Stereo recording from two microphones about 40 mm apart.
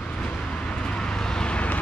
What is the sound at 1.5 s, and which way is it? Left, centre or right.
Vehicle, left.